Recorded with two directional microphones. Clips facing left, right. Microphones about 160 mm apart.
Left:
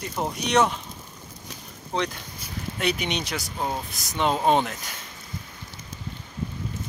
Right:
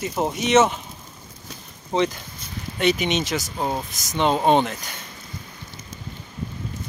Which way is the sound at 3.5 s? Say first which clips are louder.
Right 2 dB; 15° right (ahead or behind).